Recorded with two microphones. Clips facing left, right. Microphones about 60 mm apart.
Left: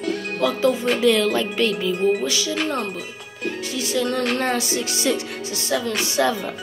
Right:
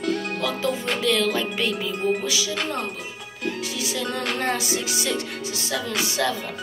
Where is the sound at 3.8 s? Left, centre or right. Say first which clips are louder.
Left 5 dB; centre.